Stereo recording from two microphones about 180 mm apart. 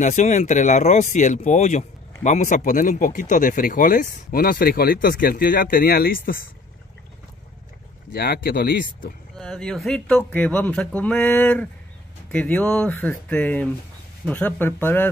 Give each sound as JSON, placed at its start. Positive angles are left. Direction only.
{"t": 0.0, "sound": "speech", "side_deg": 40}
{"t": 8.1, "sound": "speech", "side_deg": 60}
{"t": 9.4, "sound": "speech", "side_deg": 5}